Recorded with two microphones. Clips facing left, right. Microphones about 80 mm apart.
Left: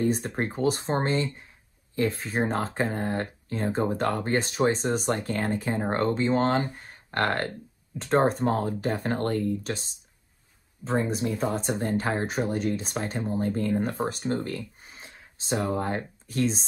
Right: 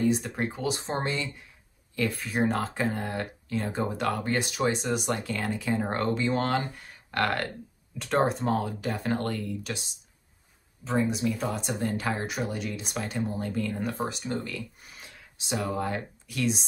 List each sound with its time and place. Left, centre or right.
0.0 s speech: left
14.6 s speech: left